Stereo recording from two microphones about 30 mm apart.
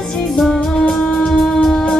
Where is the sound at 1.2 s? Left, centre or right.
Centre.